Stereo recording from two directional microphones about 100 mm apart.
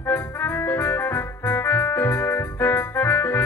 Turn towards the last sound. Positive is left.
turn(degrees=20)  # may be behind; listen again after turning